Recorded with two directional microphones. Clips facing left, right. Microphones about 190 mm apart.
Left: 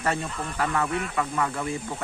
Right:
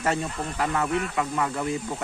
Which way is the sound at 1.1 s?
15° right (ahead or behind).